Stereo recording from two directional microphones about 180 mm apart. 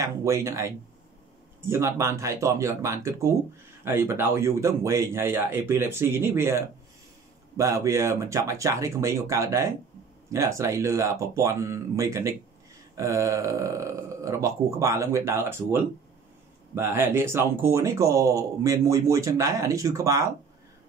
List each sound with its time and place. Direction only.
0.0 s speech: 15° right (ahead or behind)